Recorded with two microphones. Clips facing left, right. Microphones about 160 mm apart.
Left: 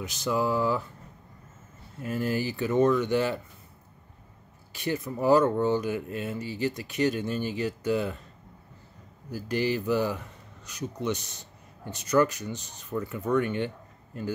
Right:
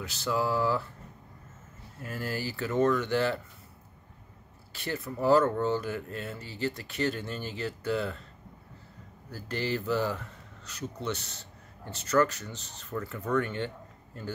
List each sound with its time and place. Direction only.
0.0 s speech: 15° left (ahead or behind)
2.0 s speech: 20° left (ahead or behind)
4.7 s speech: 15° left (ahead or behind)
9.3 s speech: 15° left (ahead or behind)